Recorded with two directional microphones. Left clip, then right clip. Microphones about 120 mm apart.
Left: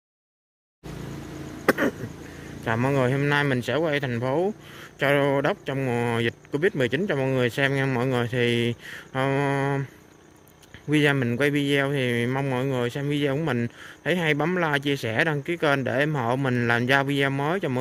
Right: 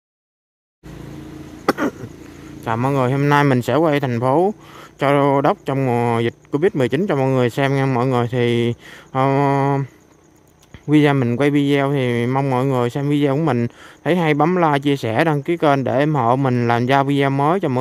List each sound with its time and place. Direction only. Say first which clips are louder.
1.7 s a sound: right 3 dB; 30° right (ahead or behind)
2.6 s speech: right 5 dB; 30° right (ahead or behind)
10.9 s speech: right 6 dB; 35° right (ahead or behind)